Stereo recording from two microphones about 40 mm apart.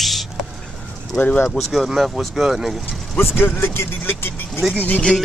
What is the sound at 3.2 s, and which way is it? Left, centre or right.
Speech, left.